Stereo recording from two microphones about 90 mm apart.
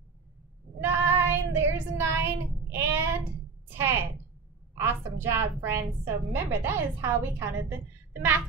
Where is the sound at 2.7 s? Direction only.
30° right (ahead or behind).